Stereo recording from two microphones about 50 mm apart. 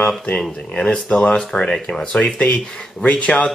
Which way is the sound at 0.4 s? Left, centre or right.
Centre.